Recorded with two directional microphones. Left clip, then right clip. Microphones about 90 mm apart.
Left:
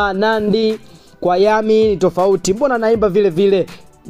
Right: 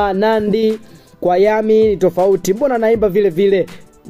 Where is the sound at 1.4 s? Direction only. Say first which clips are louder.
Right 1 dB; 30° left (ahead or behind).